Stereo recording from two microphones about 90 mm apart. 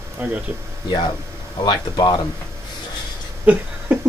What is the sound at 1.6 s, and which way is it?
Speech, 55° left (ahead or behind).